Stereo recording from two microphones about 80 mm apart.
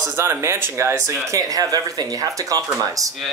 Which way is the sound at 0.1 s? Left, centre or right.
Right.